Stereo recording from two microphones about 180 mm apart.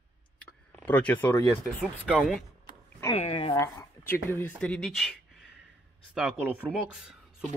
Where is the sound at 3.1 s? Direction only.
35° left (ahead or behind).